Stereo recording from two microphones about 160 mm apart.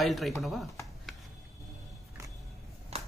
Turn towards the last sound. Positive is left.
turn(degrees=-40)  # may be behind; listen again after turning